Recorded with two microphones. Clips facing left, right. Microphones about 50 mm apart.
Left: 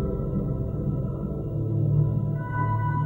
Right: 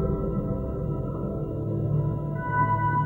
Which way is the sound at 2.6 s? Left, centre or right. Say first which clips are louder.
Right 5 dB; centre.